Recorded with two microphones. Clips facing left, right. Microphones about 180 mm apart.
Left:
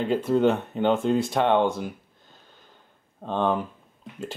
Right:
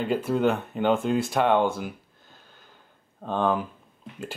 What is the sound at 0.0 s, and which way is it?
Speech, 5° right (ahead or behind).